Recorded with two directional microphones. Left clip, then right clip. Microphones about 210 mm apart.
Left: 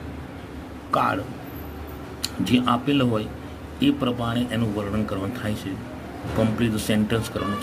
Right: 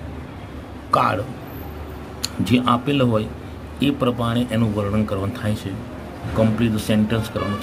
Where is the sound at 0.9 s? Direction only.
10° right (ahead or behind).